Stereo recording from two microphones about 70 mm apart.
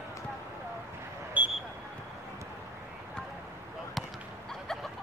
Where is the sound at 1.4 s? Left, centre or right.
Right.